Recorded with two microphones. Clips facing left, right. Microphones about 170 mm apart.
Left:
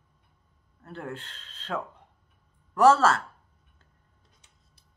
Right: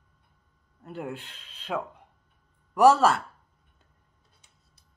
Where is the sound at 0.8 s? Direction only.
15° right (ahead or behind).